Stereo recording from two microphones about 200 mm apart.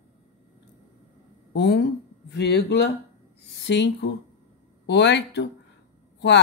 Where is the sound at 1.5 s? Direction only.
55° left (ahead or behind).